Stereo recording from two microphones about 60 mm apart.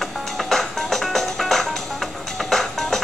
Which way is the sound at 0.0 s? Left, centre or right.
Centre.